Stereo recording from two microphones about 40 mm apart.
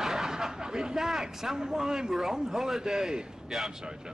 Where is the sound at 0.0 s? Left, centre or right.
Centre.